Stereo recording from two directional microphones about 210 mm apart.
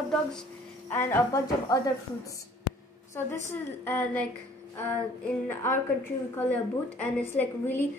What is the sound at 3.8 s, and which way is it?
A woman's voice, 10° left (ahead or behind).